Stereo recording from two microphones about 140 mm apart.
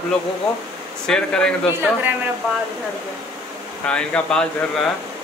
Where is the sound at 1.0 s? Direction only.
5° left (ahead or behind).